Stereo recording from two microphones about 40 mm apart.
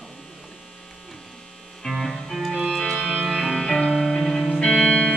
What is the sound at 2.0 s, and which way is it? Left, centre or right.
Music, centre.